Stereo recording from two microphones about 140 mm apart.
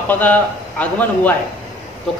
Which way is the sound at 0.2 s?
10° left (ahead or behind).